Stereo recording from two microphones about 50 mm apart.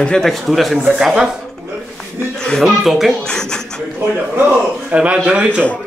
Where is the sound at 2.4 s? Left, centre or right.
Centre.